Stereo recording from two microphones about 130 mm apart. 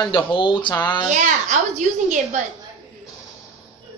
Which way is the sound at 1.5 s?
70° right (ahead or behind).